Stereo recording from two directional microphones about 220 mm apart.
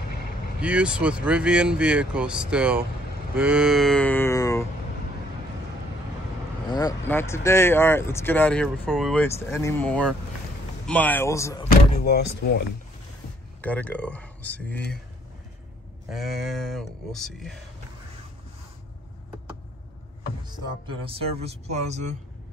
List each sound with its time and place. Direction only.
0.6 s speech: 5° right (ahead or behind); by 4.6 s 15° left (ahead or behind)
6.7 s speech: 15° left (ahead or behind)
11.7 s speech: 45° left (ahead or behind)
13.6 s speech: 5° left (ahead or behind)
16.1 s speech: centre (ahead or behind)
20.4 s speech: 25° right (ahead or behind)